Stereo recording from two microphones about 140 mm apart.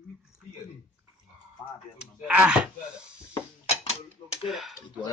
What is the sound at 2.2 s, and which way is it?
Speech, 10° right (ahead or behind).